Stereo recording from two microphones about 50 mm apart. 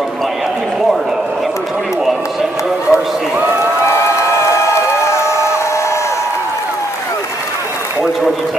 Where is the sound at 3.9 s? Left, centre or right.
Left.